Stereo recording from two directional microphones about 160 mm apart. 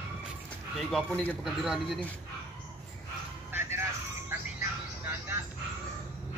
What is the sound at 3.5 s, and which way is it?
Vehicle, 15° right (ahead or behind).